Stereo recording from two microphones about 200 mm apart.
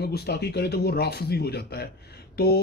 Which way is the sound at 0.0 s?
55° left (ahead or behind).